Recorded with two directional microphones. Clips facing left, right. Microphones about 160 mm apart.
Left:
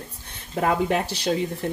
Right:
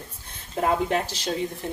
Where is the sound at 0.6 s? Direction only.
65° left (ahead or behind).